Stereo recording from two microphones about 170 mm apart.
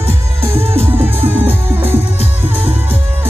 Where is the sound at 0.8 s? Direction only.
10° right (ahead or behind).